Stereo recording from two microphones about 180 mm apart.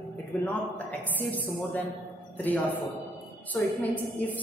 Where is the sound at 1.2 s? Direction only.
10° left (ahead or behind).